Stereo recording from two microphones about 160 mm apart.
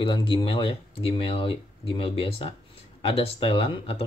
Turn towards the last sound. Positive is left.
turn(degrees=35)  # may be behind; listen again after turning